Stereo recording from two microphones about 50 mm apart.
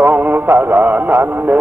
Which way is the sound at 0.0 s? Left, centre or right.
Right.